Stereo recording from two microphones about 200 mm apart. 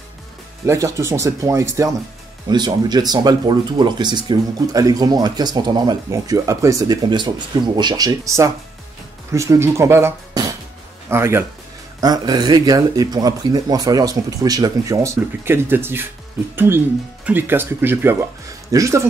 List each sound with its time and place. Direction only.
0.7 s speech: 15° right (ahead or behind)